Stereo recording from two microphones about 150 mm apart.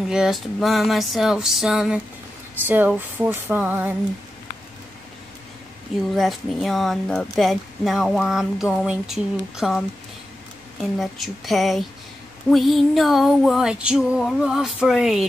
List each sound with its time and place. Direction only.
0.1 s female singing: centre (ahead or behind)
2.6 s music: 10° right (ahead or behind)
6.1 s female singing: centre (ahead or behind)